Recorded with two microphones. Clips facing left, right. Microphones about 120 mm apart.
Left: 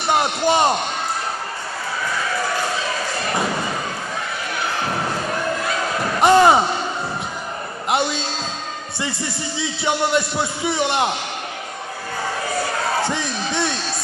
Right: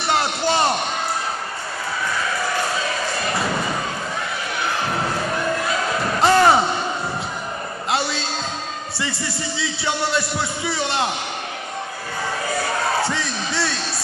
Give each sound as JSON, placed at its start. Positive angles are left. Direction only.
{"t": 0.1, "sound": "a man's voice", "side_deg": 20}
{"t": 6.2, "sound": "a sound", "side_deg": 15}
{"t": 9.6, "sound": "a man's voice", "side_deg": 20}
{"t": 13.0, "sound": "crowd", "side_deg": 20}